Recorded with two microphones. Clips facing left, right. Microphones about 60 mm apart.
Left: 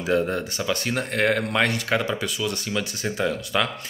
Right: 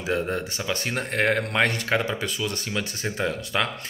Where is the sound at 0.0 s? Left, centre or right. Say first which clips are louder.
Left 3 dB; centre.